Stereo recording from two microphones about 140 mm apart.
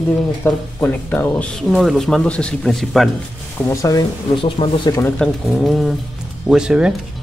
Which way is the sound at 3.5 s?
20° left (ahead or behind).